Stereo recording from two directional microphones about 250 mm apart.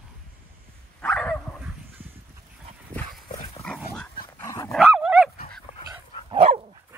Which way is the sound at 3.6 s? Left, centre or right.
Centre.